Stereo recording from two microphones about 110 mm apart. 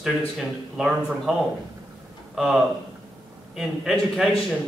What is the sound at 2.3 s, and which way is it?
Speech, 5° right (ahead or behind).